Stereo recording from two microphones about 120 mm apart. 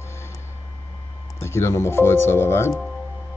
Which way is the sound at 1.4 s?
20° left (ahead or behind).